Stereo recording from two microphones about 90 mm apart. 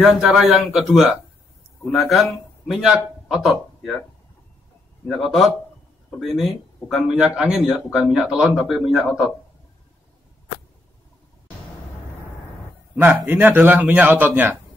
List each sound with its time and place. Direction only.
0.0 s a man's voice: 5° right (ahead or behind)
5.0 s speech: centre (ahead or behind)
13.4 s a man's voice: 20° right (ahead or behind)